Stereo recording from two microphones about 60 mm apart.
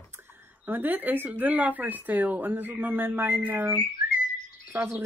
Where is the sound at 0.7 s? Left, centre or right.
Right.